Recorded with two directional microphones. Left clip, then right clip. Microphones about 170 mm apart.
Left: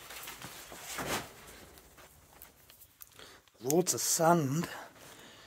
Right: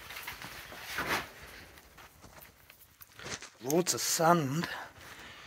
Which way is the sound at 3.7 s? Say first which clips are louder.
Even; 20° left (ahead or behind).